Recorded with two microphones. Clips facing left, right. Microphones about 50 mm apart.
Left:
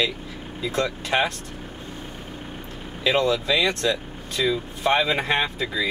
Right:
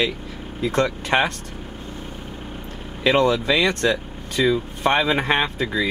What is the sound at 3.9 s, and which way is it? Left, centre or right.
Vehicle, right.